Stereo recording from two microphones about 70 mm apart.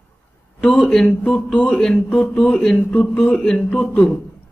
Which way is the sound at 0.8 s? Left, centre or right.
Centre.